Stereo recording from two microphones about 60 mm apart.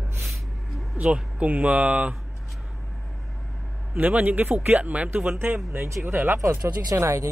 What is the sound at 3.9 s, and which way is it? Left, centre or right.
Speech, right.